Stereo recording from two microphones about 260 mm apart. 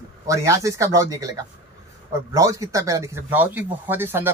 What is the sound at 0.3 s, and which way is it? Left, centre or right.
Speech, centre.